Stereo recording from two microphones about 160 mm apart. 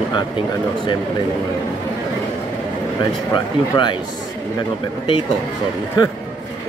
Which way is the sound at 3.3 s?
30° left (ahead or behind).